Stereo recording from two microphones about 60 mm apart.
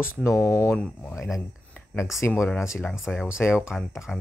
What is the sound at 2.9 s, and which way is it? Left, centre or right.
Speech, centre.